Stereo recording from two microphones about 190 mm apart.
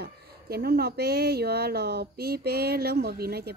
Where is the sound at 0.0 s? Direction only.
55° right (ahead or behind).